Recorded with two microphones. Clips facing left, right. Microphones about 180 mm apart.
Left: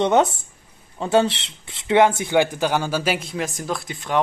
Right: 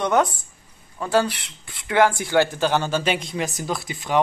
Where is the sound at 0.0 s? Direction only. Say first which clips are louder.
Left 3 dB; 25° left (ahead or behind).